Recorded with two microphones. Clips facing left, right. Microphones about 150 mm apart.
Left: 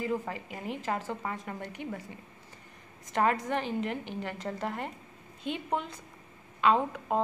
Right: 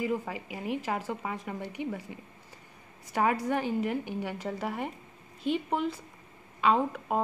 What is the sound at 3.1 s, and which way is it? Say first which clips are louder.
A woman's voice: right 1 dB; 5° right (ahead or behind).